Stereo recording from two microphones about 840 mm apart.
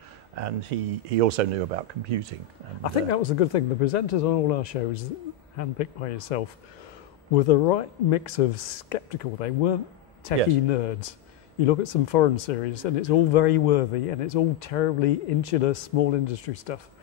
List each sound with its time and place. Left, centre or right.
0.4 s speech: right
2.8 s speech: left